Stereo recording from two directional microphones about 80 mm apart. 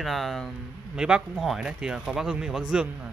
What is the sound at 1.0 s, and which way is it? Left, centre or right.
Speech, centre.